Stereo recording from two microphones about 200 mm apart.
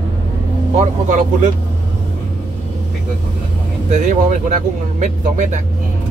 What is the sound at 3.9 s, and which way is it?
Speech, 40° right (ahead or behind).